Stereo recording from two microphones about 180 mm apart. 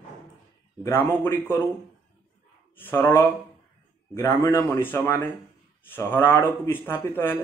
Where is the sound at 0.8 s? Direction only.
10° left (ahead or behind).